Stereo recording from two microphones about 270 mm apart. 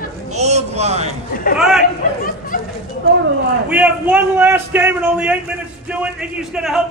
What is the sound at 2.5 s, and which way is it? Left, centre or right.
Chatter, left.